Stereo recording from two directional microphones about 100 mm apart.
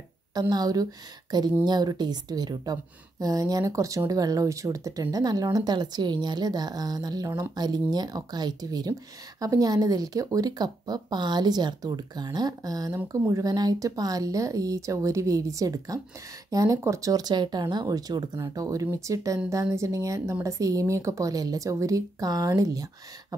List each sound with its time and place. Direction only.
0.3 s a woman's voice: 40° right (ahead or behind)